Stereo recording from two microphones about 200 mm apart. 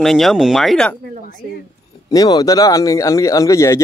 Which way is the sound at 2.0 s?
20° left (ahead or behind).